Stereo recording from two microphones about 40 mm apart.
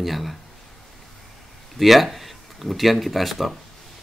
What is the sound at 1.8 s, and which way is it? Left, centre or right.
Speech, centre.